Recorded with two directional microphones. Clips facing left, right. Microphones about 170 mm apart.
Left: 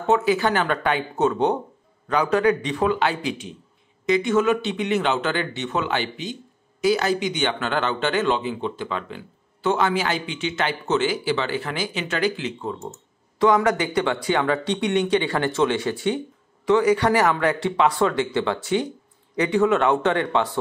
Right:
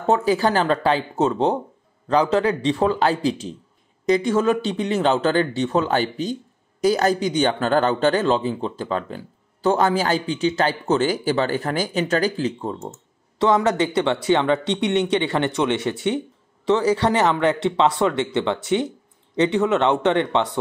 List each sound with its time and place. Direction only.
0.0 s speech: 35° right (ahead or behind)
13.4 s speech: 25° right (ahead or behind)